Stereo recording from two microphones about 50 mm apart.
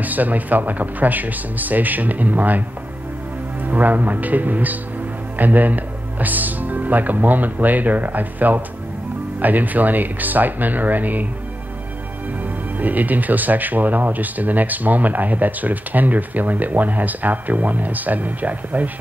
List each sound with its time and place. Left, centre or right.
0.0 s speech: right
3.6 s speech: right
12.7 s speech: right